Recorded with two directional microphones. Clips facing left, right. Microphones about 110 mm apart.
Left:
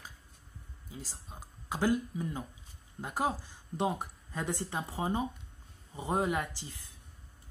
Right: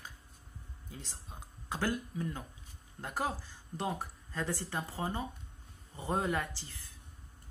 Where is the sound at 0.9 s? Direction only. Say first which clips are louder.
Left 3 dB; 5° left (ahead or behind).